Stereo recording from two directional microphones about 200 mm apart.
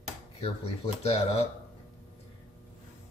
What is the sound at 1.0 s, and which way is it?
Speech, 30° left (ahead or behind).